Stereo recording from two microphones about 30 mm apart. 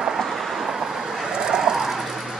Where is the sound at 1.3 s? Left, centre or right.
Right.